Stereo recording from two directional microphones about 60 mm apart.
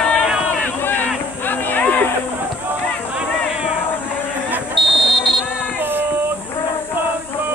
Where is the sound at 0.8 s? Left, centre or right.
Left.